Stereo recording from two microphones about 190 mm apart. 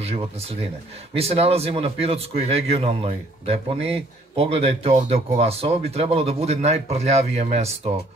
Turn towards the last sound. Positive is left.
turn(degrees=-35)  # may be behind; listen again after turning